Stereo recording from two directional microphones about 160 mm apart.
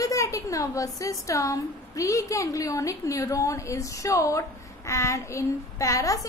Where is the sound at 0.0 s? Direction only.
20° left (ahead or behind).